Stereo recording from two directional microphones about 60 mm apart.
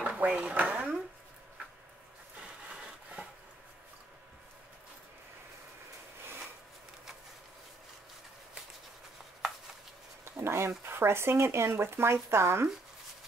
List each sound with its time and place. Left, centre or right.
0.0 s speech: centre
0.6 s speech: right
2.7 s wood: centre
10.2 s a sound: right
10.8 s speech: right